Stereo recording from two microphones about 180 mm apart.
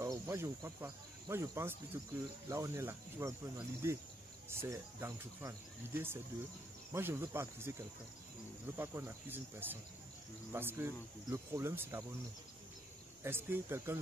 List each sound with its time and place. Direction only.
0.0 s speech: 15° right (ahead or behind)
8.7 s speech: 10° right (ahead or behind)
13.2 s speech: 10° right (ahead or behind)